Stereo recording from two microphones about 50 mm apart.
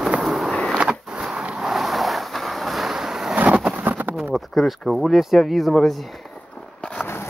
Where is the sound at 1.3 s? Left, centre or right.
Centre.